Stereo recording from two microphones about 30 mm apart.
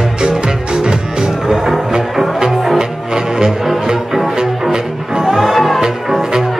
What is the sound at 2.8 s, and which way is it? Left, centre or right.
Music, right.